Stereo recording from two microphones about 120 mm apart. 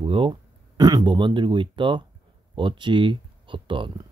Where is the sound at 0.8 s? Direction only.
35° right (ahead or behind).